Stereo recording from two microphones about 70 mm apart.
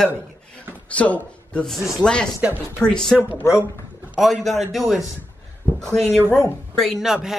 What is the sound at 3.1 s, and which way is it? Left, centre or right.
Speech, right.